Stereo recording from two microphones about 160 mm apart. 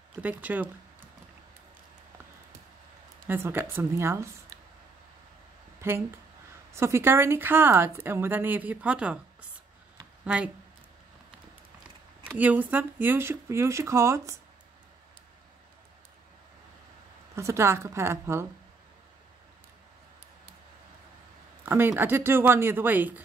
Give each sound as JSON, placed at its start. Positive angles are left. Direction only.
{"t": 0.2, "sound": "a woman's voice", "side_deg": -10}
{"t": 3.3, "sound": "a woman's voice", "side_deg": -15}
{"t": 5.8, "sound": "a sound", "side_deg": -15}
{"t": 6.7, "sound": "a woman's voice", "side_deg": -15}
{"t": 10.2, "sound": "speech", "side_deg": -5}
{"t": 12.3, "sound": "a woman's voice", "side_deg": -10}
{"t": 17.4, "sound": "a woman's voice", "side_deg": -15}
{"t": 21.6, "sound": "a woman's voice", "side_deg": -15}